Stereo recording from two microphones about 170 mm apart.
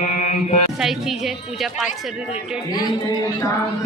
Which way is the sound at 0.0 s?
45° left (ahead or behind).